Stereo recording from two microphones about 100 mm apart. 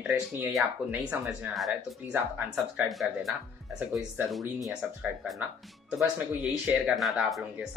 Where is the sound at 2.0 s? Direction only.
15° right (ahead or behind).